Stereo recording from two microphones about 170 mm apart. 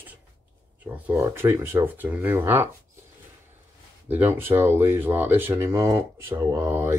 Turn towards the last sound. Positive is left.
turn(degrees=-15)  # may be behind; listen again after turning